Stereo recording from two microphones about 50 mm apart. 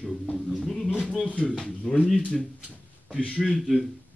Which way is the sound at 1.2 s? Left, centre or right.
Left.